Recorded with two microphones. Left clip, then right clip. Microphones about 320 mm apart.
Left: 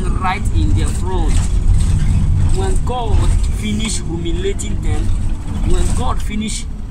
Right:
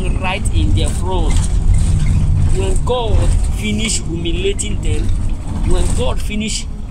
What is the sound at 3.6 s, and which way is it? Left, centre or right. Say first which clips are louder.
Speech: right 3 dB; right.